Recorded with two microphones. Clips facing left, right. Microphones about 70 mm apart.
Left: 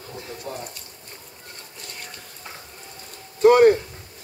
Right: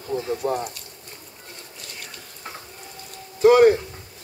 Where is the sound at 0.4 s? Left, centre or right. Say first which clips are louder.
Right 9 dB; right.